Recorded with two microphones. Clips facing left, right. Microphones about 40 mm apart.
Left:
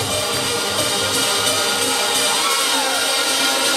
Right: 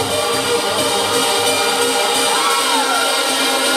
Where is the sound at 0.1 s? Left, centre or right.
Centre.